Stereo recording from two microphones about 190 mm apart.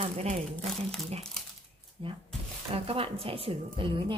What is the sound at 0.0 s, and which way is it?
Speech, 30° right (ahead or behind).